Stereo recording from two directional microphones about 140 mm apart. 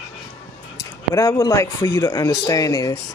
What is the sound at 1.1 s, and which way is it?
Speech, 25° left (ahead or behind).